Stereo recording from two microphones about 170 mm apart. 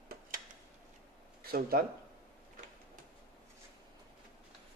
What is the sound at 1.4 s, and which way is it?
Speech, 60° right (ahead or behind).